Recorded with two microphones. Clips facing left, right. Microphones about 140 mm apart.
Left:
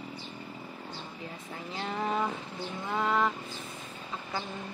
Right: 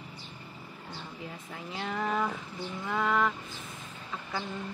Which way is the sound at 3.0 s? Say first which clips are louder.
Even; centre (ahead or behind).